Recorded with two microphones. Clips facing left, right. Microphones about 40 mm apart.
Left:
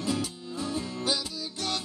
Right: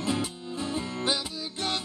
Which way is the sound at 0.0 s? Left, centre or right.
Right.